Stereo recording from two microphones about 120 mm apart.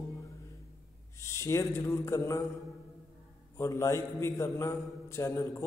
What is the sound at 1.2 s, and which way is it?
Speech, 25° left (ahead or behind).